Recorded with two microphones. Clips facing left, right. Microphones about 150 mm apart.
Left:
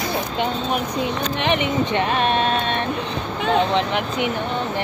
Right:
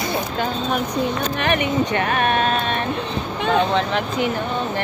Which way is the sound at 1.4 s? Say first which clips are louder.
Even; 20° left (ahead or behind).